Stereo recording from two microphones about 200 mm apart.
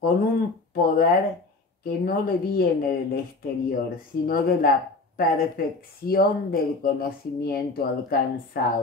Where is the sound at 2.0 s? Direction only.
50° left (ahead or behind).